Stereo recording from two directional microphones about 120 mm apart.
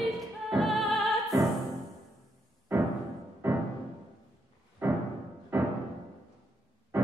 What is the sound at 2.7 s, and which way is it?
Music, 20° right (ahead or behind).